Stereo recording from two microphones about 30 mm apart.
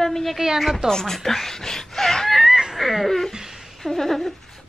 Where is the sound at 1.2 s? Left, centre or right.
Centre.